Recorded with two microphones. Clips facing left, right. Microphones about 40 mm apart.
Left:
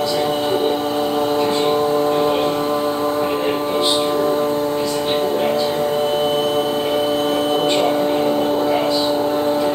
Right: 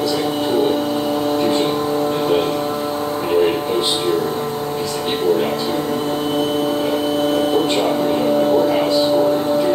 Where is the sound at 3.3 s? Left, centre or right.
Centre.